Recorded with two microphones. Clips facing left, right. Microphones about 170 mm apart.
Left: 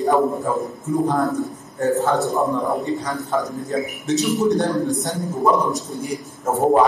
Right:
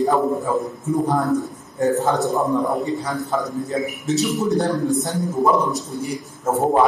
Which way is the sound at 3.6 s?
Centre (ahead or behind).